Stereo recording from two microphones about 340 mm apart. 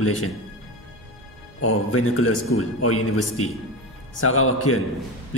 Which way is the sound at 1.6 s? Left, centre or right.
Left.